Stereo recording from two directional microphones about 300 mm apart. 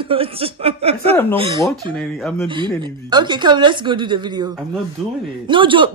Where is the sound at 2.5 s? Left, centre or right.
Centre.